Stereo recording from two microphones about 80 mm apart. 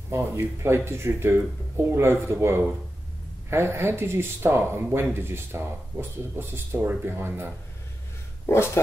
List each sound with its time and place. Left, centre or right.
0.1 s speech: right
8.5 s speech: left